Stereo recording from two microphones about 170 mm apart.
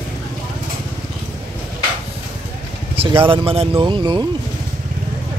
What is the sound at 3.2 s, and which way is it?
Speech, 30° right (ahead or behind).